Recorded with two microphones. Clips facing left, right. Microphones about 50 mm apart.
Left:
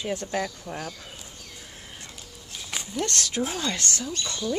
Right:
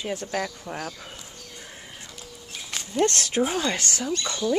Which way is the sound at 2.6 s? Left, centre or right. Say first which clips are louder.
Right 3 dB; centre.